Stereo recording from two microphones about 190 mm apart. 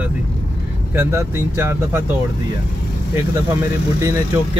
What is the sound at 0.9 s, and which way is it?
Speech, 10° right (ahead or behind).